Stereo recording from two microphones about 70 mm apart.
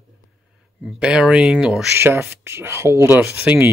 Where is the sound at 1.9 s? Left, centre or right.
Right.